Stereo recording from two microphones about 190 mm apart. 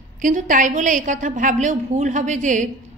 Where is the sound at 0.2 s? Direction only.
45° right (ahead or behind).